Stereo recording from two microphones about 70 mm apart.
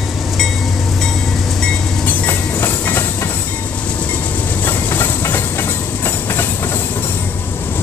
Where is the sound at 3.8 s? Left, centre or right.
Left.